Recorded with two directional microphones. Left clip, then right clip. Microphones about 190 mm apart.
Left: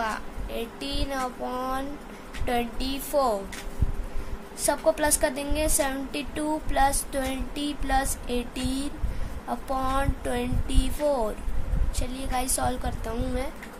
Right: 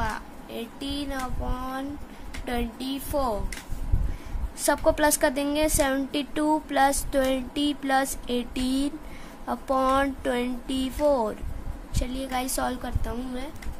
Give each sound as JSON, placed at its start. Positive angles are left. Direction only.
{"t": 0.0, "sound": "a woman's voice", "side_deg": -10}
{"t": 4.6, "sound": "a woman's voice", "side_deg": -30}